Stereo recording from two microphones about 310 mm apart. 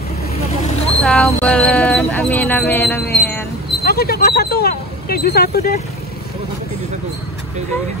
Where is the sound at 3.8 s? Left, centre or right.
Left.